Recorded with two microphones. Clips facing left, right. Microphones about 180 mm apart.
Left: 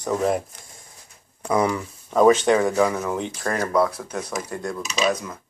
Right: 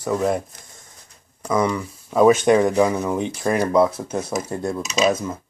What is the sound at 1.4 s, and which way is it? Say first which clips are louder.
Speech: right 1 dB; 5° left (ahead or behind).